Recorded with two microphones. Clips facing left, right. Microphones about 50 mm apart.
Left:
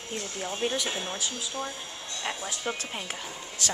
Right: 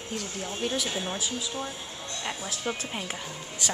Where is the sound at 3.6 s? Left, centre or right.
Centre.